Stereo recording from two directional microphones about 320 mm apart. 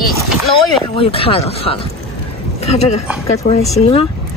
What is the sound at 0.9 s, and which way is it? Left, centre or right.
Speech, centre.